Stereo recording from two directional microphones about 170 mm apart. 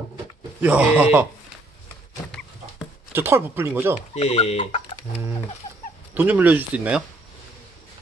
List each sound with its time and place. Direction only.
0.6 s speech: 10° right (ahead or behind)
2.2 s dog: 5° left (ahead or behind)
3.1 s speech: 15° right (ahead or behind)
4.1 s speech: 40° left (ahead or behind)
6.1 s speech: 10° right (ahead or behind)